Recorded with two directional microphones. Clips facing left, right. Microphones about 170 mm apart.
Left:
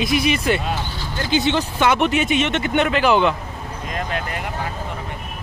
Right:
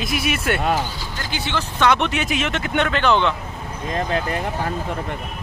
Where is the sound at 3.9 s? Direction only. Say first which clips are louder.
Right 4 dB; 30° right (ahead or behind).